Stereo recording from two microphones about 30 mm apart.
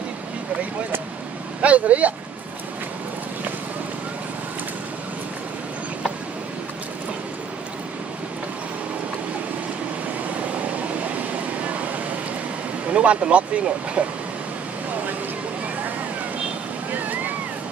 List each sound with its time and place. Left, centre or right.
1.6 s speech: right
10.3 s vehicle: right
12.9 s speech: right
16.9 s waves: right